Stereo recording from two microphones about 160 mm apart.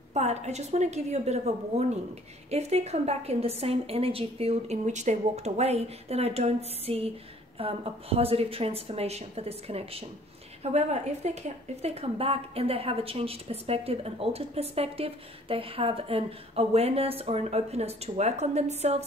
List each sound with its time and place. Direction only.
0.1 s a woman's voice: 45° right (ahead or behind)